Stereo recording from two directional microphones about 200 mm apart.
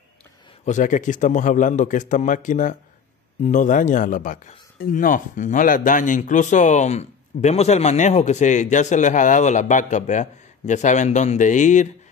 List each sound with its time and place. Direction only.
0.7 s a man's voice: 40° left (ahead or behind)